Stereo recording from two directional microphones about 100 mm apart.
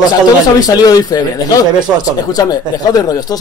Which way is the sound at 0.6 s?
40° left (ahead or behind).